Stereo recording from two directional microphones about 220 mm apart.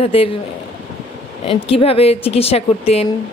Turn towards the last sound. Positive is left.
turn(degrees=25)  # may be behind; listen again after turning